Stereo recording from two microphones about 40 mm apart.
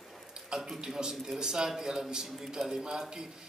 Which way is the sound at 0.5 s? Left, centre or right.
Centre.